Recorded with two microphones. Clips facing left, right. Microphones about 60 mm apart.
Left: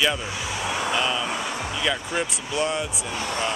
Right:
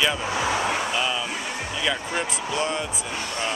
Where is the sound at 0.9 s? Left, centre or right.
Centre.